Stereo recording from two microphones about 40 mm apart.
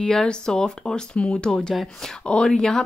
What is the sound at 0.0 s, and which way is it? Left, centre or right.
Speech, centre.